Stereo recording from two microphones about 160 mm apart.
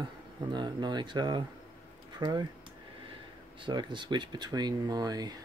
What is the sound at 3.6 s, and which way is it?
Speech, 30° right (ahead or behind).